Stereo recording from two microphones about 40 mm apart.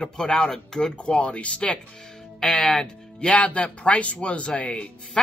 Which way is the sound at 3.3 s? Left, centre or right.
Left.